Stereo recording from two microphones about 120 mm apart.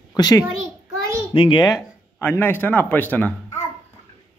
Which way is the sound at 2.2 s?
20° left (ahead or behind).